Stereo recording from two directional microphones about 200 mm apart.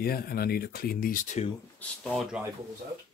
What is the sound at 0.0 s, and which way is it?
Speech, 50° left (ahead or behind).